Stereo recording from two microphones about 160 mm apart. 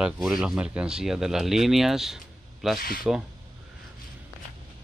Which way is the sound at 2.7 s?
70° left (ahead or behind).